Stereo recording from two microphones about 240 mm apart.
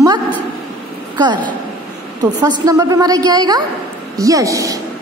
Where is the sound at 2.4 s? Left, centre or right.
Centre.